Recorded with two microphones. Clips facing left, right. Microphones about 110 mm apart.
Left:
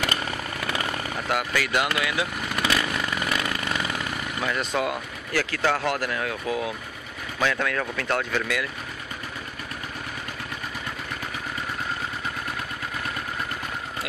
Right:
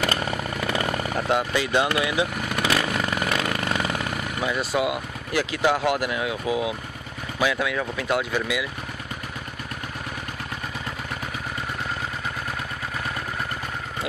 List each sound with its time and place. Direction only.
0.7 s a sound: 30° right (ahead or behind)
1.5 s chainsaw: 25° right (ahead or behind)
4.4 s speech: 15° right (ahead or behind)